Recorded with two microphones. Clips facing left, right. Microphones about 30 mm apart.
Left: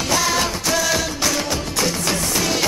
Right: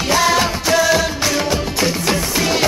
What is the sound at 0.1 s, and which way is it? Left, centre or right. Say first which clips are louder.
Music: right 5 dB; centre.